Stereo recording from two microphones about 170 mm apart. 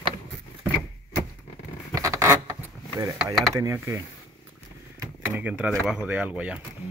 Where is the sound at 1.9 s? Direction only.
20° right (ahead or behind).